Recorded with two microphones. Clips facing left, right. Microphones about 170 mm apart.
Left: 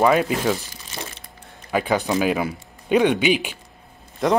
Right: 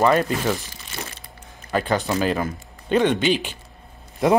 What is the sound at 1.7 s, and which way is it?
Speech, 10° left (ahead or behind).